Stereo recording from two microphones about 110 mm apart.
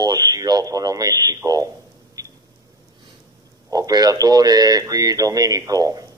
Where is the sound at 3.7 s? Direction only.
35° right (ahead or behind).